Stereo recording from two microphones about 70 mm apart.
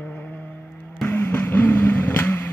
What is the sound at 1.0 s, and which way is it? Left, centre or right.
Vehicle, left.